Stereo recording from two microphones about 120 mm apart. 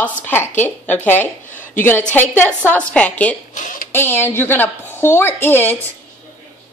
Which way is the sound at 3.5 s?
90° left.